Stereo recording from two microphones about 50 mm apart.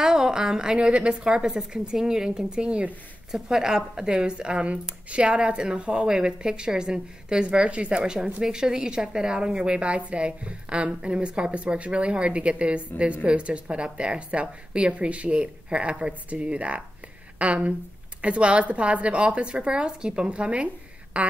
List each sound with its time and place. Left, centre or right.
0.0 s a woman's voice: centre
3.3 s a woman's voice: centre